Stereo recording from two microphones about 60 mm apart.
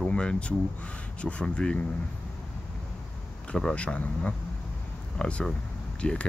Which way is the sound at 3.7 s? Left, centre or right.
Left.